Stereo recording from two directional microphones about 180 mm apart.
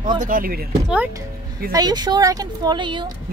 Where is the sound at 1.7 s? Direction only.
25° right (ahead or behind).